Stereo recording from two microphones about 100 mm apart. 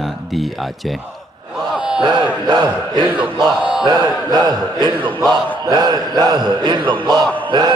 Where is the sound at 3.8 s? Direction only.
45° right (ahead or behind).